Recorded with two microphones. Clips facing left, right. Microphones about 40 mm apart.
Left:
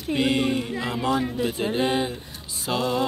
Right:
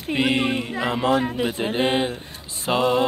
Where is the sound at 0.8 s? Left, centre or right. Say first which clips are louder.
Right 4 dB; right.